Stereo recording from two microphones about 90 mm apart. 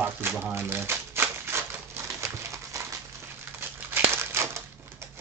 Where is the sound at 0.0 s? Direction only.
25° right (ahead or behind).